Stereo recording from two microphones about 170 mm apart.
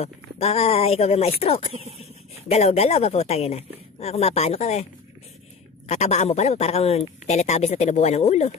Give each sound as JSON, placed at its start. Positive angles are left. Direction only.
{"t": 0.0, "sound": "a man's voice", "side_deg": 40}
{"t": 5.9, "sound": "a man's voice", "side_deg": 40}